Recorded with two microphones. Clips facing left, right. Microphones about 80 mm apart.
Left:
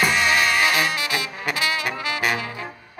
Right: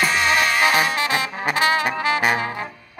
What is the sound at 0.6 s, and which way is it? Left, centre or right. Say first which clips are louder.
Brass instrument: right 3 dB; right.